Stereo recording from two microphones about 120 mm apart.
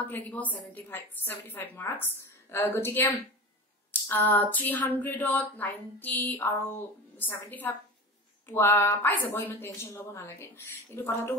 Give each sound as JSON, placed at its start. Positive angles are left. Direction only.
{"t": 0.1, "sound": "a woman's voice", "side_deg": 15}
{"t": 4.1, "sound": "a woman's voice", "side_deg": 15}